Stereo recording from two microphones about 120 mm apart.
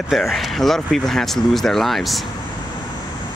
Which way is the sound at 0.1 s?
Centre (ahead or behind).